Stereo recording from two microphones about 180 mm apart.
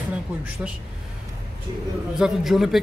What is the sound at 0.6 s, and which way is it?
Speech, 5° right (ahead or behind).